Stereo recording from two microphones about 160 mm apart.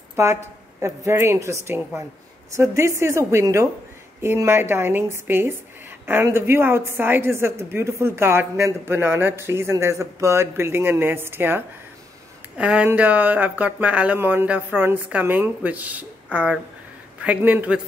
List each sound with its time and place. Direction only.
0.1 s a woman's voice: 15° right (ahead or behind)